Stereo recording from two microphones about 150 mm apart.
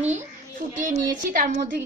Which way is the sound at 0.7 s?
60° right (ahead or behind).